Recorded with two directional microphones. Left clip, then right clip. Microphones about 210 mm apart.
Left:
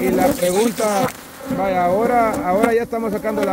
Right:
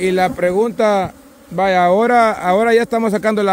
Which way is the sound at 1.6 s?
35° right (ahead or behind).